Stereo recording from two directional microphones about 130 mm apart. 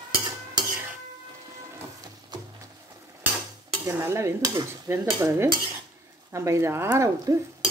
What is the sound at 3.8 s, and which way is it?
Stir, 20° right (ahead or behind).